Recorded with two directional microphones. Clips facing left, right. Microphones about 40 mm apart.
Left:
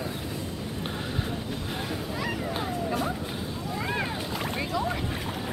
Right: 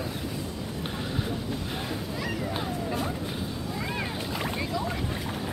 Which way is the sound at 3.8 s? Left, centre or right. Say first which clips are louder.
Left 3 dB; centre.